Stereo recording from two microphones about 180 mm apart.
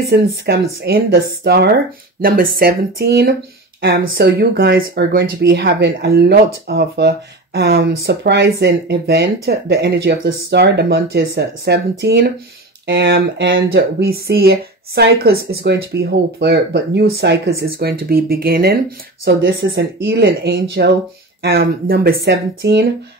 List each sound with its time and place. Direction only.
0.0 s speech: 60° right (ahead or behind)
3.8 s speech: 80° right; by 18.8 s 55° right (ahead or behind)
19.2 s speech: 70° right (ahead or behind)